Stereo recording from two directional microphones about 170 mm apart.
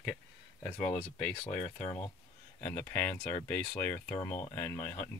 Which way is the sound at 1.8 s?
30° left (ahead or behind).